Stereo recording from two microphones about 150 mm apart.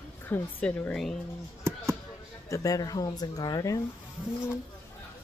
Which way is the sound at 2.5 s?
25° left (ahead or behind).